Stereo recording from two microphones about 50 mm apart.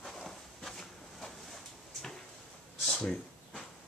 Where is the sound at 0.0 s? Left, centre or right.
Centre.